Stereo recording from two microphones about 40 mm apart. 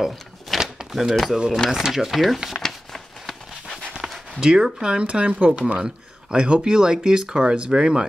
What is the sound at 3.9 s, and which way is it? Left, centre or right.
Speech, centre.